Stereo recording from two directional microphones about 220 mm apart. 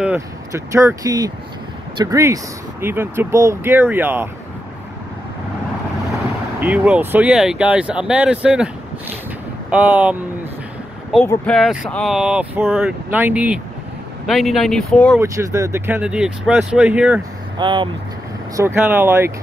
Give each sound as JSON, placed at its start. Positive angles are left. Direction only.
{"t": 0.0, "sound": "speech", "side_deg": -10}
{"t": 6.6, "sound": "speech", "side_deg": -5}
{"t": 9.7, "sound": "speech", "side_deg": -5}
{"t": 11.2, "sound": "speech", "side_deg": 5}
{"t": 15.1, "sound": "speech", "side_deg": -15}
{"t": 17.6, "sound": "speech", "side_deg": -20}
{"t": 18.6, "sound": "speech", "side_deg": -10}